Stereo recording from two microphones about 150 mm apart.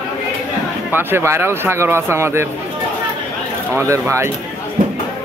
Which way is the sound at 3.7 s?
20° right (ahead or behind).